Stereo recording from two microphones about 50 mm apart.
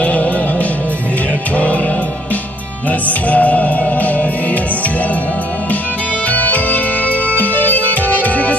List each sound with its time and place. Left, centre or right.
0.0 s music: left
3.1 s music: left
6.3 s music: left